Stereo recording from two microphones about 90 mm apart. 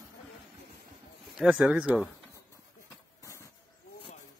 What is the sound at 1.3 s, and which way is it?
Speech, 10° right (ahead or behind).